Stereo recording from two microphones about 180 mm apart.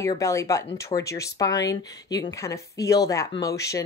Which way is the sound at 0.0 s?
15° left (ahead or behind).